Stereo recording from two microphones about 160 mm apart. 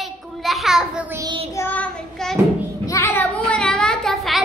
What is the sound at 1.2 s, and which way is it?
Child singing, 30° right (ahead or behind).